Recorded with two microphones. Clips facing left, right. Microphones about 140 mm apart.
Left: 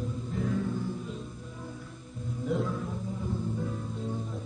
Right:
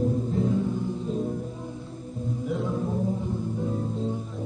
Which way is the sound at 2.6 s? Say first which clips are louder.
Right 6 dB; 30° right (ahead or behind).